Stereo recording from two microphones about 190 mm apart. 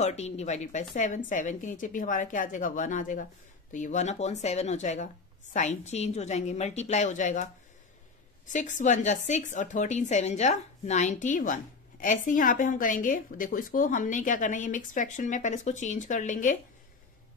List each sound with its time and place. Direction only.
0.0 s a woman's voice: 35° left (ahead or behind)
8.5 s a woman's voice: 40° left (ahead or behind)